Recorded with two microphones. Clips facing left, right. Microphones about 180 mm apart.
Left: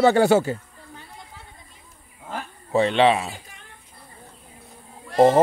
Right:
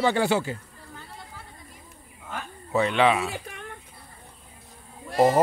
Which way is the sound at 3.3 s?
60° right (ahead or behind).